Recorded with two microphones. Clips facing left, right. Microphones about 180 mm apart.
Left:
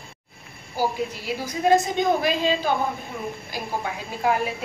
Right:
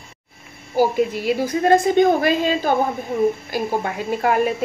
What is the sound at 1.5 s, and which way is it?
A woman's voice, 55° right (ahead or behind).